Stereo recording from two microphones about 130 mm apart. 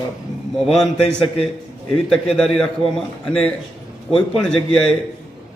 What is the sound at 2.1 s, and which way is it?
A man's voice, 5° left (ahead or behind).